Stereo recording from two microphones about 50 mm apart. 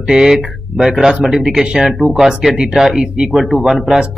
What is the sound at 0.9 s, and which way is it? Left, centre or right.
Speech, centre.